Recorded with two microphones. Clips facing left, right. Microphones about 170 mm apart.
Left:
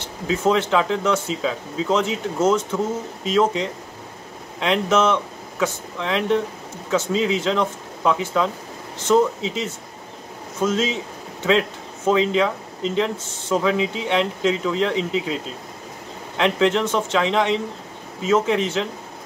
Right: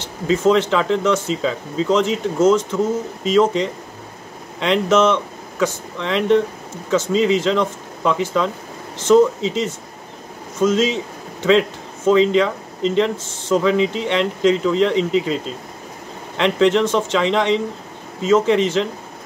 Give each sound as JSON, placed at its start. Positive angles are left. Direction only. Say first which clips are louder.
{"t": 0.3, "sound": "speech", "louder": "right 4 dB", "side_deg": 5}
{"t": 12.1, "sound": "speech", "louder": "right 4 dB", "side_deg": 5}
{"t": 16.3, "sound": "speech", "louder": "right 3 dB", "side_deg": 5}